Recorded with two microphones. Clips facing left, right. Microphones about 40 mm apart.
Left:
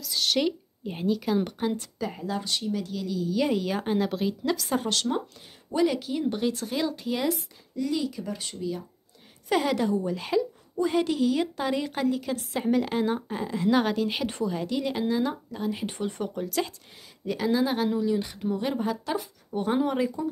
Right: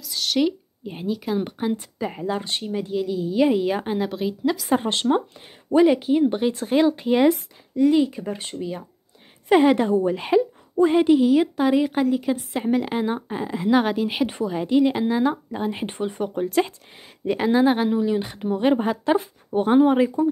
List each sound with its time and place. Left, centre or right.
0.0 s speech: centre
2.0 s a woman's voice: right; by 4.6 s centre
4.6 s a woman's voice: right
16.0 s speech: centre
16.4 s speech: right